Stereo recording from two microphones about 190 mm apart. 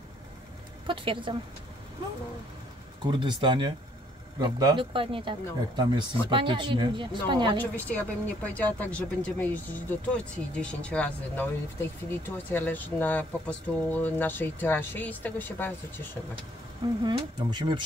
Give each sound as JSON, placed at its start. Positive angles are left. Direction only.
{"t": 0.8, "sound": "speech", "side_deg": -25}
{"t": 3.1, "sound": "speech", "side_deg": -25}
{"t": 7.7, "sound": "speech", "side_deg": 10}
{"t": 17.0, "sound": "speech", "side_deg": -20}